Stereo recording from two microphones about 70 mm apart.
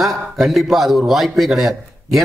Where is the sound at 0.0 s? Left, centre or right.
Centre.